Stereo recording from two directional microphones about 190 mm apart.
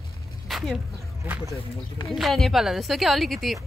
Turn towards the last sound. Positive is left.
turn(degrees=0)  # may be behind; listen again after turning